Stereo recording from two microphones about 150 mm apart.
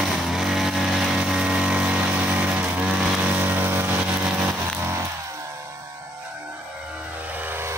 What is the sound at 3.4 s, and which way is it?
Vehicle, 15° right (ahead or behind).